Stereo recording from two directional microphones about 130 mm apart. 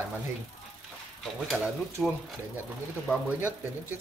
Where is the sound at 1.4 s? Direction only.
Centre (ahead or behind).